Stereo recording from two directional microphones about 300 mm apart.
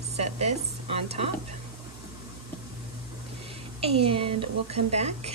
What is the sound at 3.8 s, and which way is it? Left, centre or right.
A woman's voice, centre.